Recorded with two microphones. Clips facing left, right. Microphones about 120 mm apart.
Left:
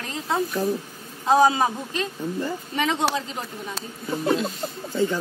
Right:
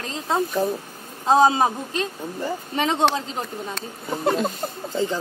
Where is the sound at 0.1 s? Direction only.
25° right (ahead or behind).